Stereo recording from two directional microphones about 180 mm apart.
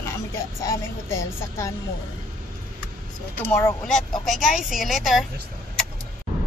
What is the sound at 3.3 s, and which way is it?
Speech, 15° left (ahead or behind).